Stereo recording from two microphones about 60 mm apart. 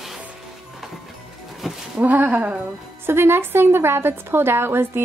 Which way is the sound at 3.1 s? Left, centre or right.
Right.